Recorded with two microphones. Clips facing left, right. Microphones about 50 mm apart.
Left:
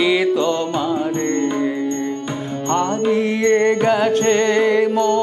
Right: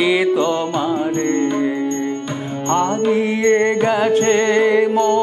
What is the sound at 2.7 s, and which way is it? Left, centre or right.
Music, centre.